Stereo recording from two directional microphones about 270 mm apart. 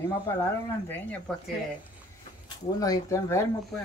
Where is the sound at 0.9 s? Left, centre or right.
Centre.